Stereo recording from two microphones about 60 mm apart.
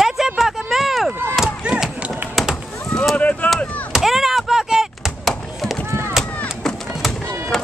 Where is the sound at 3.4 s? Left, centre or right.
Left.